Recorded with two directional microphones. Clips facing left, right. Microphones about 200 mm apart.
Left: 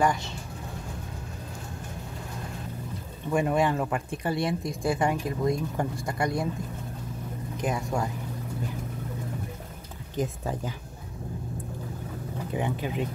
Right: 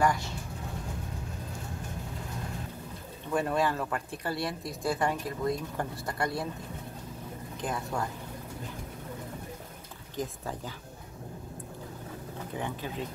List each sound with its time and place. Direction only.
0.0 s speech: 20° left (ahead or behind)
3.3 s speech: 15° left (ahead or behind)
7.6 s speech: 15° left (ahead or behind)
10.1 s speech: 15° left (ahead or behind)
12.5 s speech: 15° left (ahead or behind)